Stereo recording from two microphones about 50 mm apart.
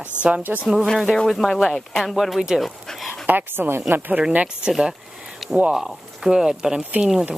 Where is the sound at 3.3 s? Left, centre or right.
Right.